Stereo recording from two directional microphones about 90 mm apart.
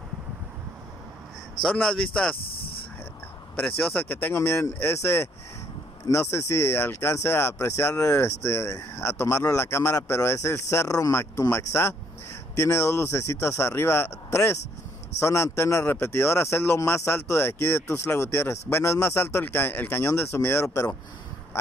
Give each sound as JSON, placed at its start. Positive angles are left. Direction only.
{"t": 1.6, "sound": "a man's voice", "side_deg": 5}
{"t": 3.6, "sound": "speech", "side_deg": 20}